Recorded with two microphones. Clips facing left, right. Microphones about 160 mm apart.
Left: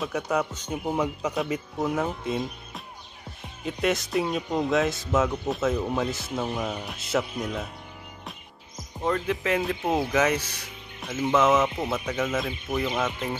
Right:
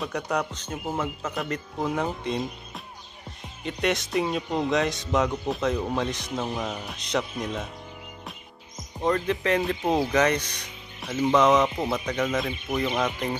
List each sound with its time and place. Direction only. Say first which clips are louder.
0.0 s speech: left 1 dB; centre (ahead or behind)
9.0 s speech: right 2 dB; 5° left (ahead or behind)